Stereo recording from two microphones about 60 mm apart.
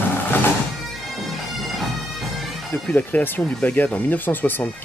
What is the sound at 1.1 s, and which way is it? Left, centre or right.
Bagpipes, centre.